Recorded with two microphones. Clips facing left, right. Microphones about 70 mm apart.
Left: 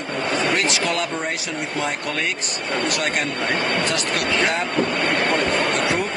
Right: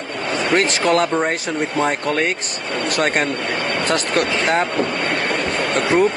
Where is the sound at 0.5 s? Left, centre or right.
Right.